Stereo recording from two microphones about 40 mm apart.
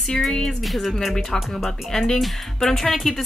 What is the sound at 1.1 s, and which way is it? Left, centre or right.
A woman's voice, centre.